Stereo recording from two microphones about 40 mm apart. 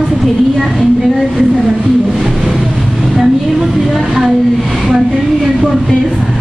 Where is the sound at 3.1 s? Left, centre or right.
Centre.